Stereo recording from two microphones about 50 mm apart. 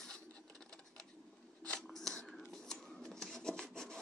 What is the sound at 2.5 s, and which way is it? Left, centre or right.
Writing, centre.